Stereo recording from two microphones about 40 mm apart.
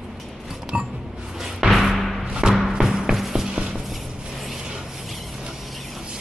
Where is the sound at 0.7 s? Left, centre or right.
Right.